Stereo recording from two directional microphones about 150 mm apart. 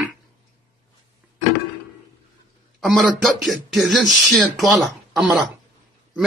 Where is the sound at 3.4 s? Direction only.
Centre (ahead or behind).